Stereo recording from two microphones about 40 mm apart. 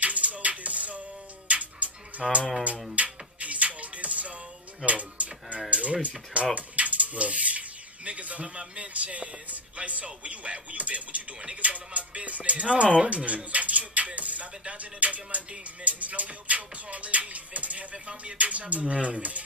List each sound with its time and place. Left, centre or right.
0.0 s music: right
4.8 s speech: right
5.7 s music: right
6.5 s speech: right
14.6 s music: right